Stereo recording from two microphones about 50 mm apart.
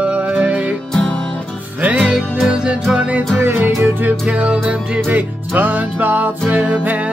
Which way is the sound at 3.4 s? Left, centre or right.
Right.